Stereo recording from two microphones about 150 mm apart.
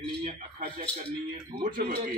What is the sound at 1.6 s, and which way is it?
Speech, 65° right (ahead or behind).